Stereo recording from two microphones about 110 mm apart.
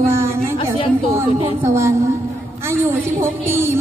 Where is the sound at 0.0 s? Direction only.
25° right (ahead or behind).